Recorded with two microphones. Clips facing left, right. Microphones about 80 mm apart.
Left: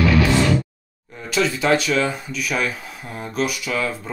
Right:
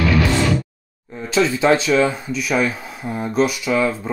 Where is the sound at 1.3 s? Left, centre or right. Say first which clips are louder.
Right 3 dB; right.